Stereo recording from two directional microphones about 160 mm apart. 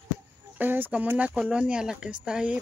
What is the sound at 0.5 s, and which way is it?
Speech, 10° right (ahead or behind).